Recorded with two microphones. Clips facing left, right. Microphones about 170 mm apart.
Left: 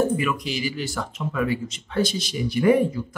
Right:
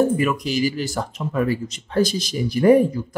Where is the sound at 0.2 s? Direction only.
40° right (ahead or behind).